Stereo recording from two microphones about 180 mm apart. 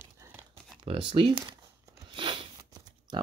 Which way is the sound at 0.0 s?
10° right (ahead or behind).